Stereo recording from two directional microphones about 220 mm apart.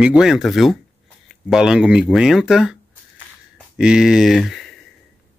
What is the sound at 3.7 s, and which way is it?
Speech, 5° right (ahead or behind).